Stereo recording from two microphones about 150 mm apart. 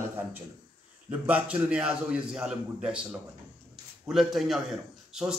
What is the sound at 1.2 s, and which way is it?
A man's voice, 10° right (ahead or behind).